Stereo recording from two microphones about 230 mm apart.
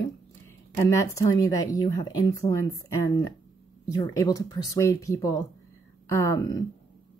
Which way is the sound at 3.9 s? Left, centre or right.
Centre.